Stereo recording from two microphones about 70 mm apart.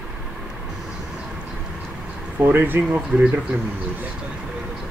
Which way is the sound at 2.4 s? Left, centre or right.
Right.